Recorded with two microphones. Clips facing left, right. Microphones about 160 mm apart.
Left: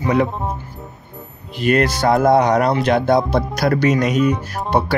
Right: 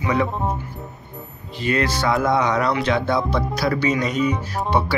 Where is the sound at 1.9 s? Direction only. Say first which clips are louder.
Left 6 dB; 45° left (ahead or behind).